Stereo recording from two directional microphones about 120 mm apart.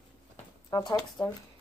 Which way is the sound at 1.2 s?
40° left (ahead or behind).